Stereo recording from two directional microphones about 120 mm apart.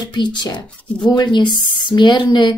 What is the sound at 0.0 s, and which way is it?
Speech, 40° left (ahead or behind).